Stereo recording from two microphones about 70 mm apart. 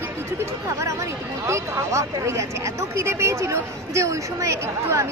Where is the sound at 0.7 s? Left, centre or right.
Right.